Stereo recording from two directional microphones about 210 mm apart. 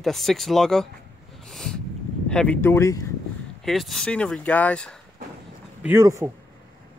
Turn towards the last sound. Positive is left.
turn(degrees=-15)  # may be behind; listen again after turning